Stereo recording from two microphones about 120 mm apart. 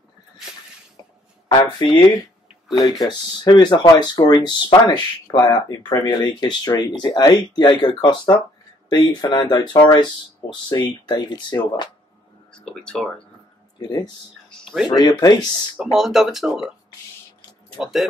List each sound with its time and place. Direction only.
1.5 s speech: 30° left (ahead or behind)
2.8 s speech: centre (ahead or behind)
3.1 s speech: 35° left (ahead or behind)
12.5 s speech: 5° left (ahead or behind)
14.9 s speech: 35° left (ahead or behind)
15.8 s speech: 5° right (ahead or behind)